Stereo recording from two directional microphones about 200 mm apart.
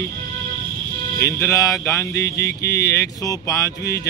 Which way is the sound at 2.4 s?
60° left (ahead or behind).